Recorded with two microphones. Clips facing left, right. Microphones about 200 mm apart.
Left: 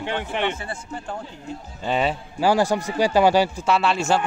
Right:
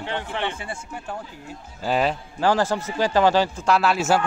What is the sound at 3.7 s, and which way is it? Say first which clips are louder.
Speech: right 2 dB; 5° right (ahead or behind).